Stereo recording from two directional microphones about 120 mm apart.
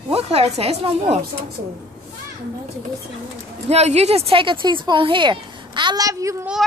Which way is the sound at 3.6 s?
60° right (ahead or behind).